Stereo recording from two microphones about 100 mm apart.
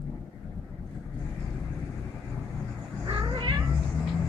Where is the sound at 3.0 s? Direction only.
55° right (ahead or behind).